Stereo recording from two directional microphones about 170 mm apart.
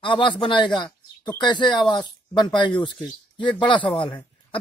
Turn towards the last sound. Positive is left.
turn(degrees=30)  # may be behind; listen again after turning